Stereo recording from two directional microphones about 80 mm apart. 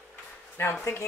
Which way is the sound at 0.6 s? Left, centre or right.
Left.